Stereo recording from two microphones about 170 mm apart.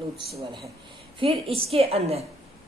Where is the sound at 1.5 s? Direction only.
35° right (ahead or behind).